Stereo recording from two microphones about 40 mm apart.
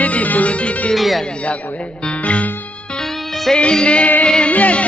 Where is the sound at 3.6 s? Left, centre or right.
Left.